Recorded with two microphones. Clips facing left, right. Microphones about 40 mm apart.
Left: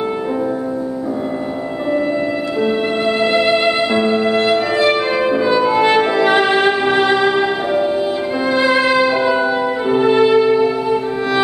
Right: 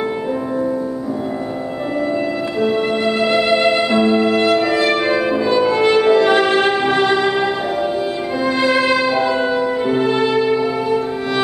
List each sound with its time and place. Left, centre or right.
2.6 s music: centre